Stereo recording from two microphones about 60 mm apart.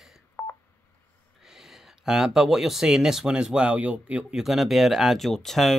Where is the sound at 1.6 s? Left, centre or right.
Centre; by 4.2 s right.